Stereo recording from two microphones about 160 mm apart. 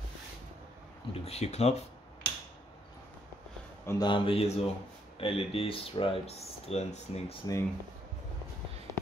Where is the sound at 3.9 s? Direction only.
30° left (ahead or behind).